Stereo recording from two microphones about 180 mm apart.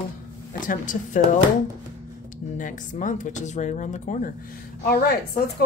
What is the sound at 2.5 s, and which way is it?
Speech, 45° left (ahead or behind).